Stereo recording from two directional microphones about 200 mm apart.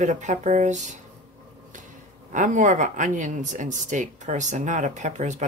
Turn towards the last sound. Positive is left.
turn(degrees=-35)  # may be behind; listen again after turning